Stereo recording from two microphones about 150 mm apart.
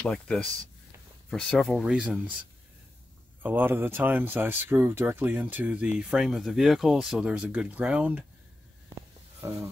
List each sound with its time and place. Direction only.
0.0 s speech: 5° left (ahead or behind)
3.4 s speech: 15° right (ahead or behind)
9.4 s speech: 20° right (ahead or behind)